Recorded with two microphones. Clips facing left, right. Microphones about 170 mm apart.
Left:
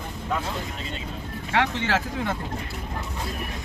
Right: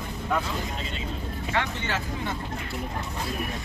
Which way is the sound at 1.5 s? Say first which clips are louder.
Left 5 dB; 90° left.